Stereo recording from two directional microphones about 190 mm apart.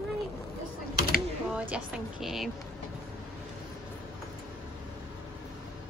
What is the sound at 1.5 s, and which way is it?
Speech, 5° right (ahead or behind).